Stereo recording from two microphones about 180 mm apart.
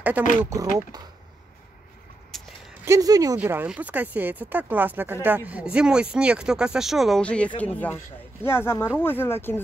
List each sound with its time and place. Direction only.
0.5 s speech: 20° right (ahead or behind)
2.3 s a sound: centre (ahead or behind)
2.8 s speech: 20° right (ahead or behind)
3.3 s speech: 10° right (ahead or behind); by 9.6 s 10° left (ahead or behind)